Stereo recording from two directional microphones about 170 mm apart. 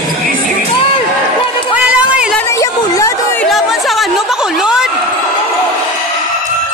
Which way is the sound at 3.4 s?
Centre (ahead or behind).